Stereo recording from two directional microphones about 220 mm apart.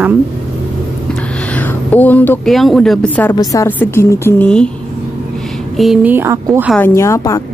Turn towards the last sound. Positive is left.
turn(degrees=15)  # may be behind; listen again after turning